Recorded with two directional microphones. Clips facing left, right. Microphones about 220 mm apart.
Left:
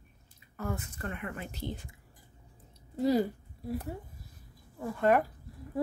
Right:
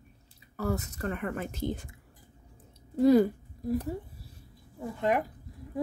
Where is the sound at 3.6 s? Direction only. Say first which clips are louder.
Right 6 dB; 40° right (ahead or behind).